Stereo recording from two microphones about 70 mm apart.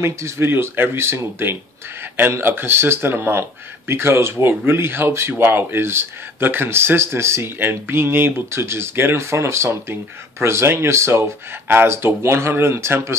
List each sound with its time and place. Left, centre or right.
0.0 s speech: right